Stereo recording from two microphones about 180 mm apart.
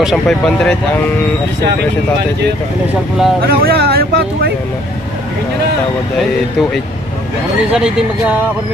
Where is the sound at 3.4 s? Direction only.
60° right (ahead or behind).